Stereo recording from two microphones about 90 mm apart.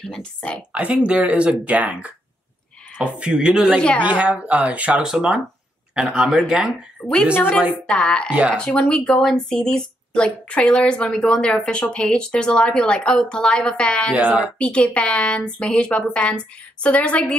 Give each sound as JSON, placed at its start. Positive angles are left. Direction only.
{"t": 0.0, "sound": "speech", "side_deg": 10}
{"t": 0.7, "sound": "speech", "side_deg": -10}
{"t": 7.3, "sound": "a woman's voice", "side_deg": 20}
{"t": 8.3, "sound": "speech", "side_deg": -15}
{"t": 8.5, "sound": "speech", "side_deg": 10}
{"t": 14.1, "sound": "speech", "side_deg": -15}
{"t": 14.6, "sound": "speech", "side_deg": 10}